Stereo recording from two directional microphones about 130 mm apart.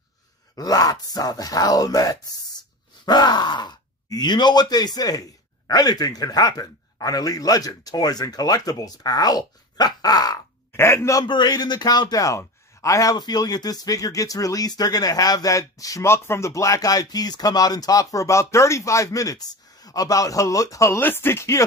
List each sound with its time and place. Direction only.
0.6 s a man's voice: 30° left (ahead or behind)
11.2 s a man's voice: 35° left (ahead or behind)